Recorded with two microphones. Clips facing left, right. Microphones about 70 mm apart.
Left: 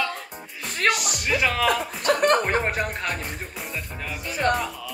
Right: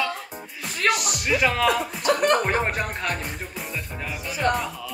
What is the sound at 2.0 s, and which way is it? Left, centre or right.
Speech, left.